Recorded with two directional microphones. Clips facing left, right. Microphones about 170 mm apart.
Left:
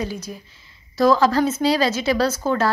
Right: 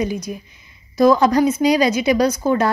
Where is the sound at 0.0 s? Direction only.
15° right (ahead or behind).